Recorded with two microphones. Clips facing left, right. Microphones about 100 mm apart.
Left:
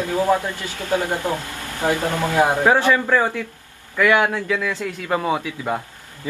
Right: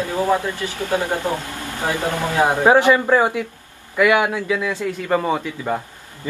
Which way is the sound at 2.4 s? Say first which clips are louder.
Right 2 dB; 15° right (ahead or behind).